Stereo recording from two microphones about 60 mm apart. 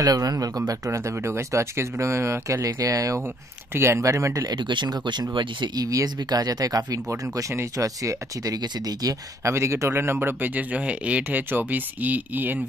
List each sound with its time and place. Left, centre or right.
0.0 s speech: right
0.8 s speech: right
2.6 s speech: right
3.7 s speech: right
7.7 s speech: right
9.4 s a man's voice: right